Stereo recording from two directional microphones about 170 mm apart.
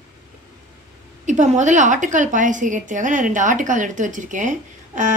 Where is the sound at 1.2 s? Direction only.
45° right (ahead or behind).